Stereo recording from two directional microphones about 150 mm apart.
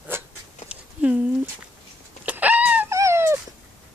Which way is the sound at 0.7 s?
5° right (ahead or behind).